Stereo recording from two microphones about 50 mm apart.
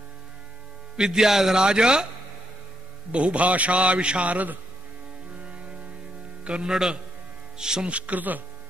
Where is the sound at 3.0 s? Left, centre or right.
Right.